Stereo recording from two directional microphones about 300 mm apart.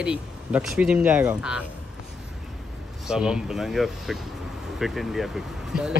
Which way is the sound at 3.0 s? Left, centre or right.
Centre.